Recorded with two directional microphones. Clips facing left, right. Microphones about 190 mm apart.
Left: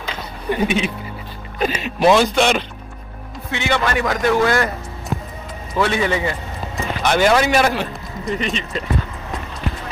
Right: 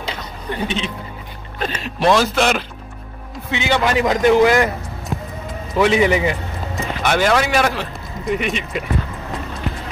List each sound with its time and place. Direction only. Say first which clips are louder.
0.5 s speech: left 4 dB; 10° left (ahead or behind)
3.5 s a man's voice: right 2 dB; 20° right (ahead or behind)
5.8 s a man's voice: right 4 dB; 15° right (ahead or behind)
6.7 s a man's voice: even; centre (ahead or behind)